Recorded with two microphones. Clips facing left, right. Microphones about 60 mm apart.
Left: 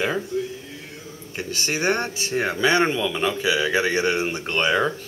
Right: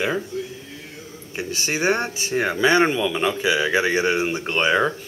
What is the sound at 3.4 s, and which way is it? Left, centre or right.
Speech, right.